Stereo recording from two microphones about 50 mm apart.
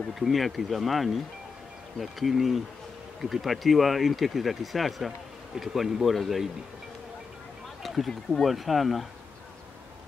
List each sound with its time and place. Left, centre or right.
0.1 s speech: centre
7.8 s a sound: centre
8.3 s speech: centre